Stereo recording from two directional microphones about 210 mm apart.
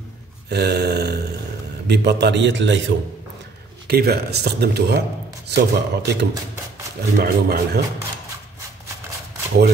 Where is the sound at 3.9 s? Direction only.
50° right (ahead or behind).